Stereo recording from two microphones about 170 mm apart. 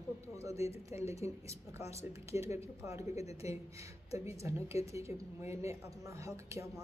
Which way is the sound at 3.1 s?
40° left (ahead or behind).